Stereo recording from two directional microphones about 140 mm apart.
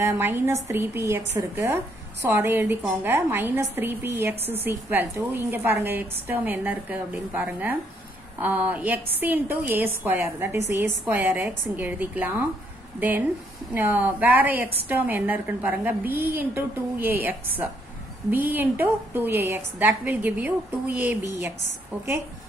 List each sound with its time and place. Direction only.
0.0 s a woman's voice: 15° right (ahead or behind)
13.7 s a woman's voice: 15° right (ahead or behind)